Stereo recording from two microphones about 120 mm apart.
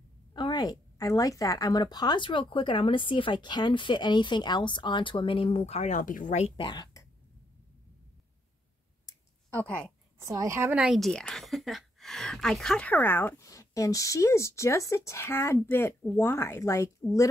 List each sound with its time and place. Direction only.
0.3 s a woman's voice: 35° left (ahead or behind); by 6.5 s 80° left
6.5 s a woman's voice: 40° left (ahead or behind)
9.5 s a woman's voice: 10° left (ahead or behind)
10.1 s a woman's voice: 25° right (ahead or behind)
10.7 s a woman's voice: 5° right (ahead or behind); by 17.3 s 25° left (ahead or behind)